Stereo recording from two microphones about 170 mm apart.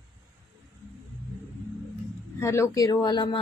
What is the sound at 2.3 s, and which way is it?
Speech, 15° left (ahead or behind).